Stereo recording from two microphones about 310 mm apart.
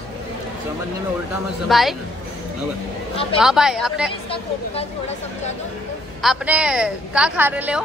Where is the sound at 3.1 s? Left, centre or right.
Centre.